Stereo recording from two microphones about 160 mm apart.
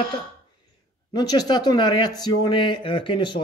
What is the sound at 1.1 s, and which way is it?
Speech, 25° left (ahead or behind).